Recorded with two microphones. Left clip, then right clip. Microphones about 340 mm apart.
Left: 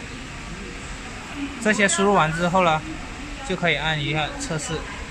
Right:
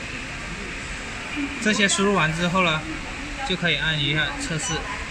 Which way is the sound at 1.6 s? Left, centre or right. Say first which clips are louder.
Left 2 dB; left.